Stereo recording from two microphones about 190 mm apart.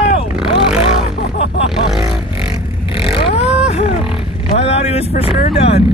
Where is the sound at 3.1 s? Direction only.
30° left (ahead or behind).